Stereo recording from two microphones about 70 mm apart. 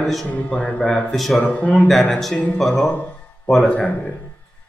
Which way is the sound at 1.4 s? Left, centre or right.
Left.